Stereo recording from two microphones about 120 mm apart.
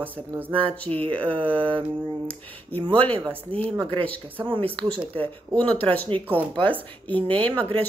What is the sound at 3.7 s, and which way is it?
Mantra, 40° right (ahead or behind).